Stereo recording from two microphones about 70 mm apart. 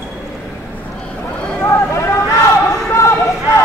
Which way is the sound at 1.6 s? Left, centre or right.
Left.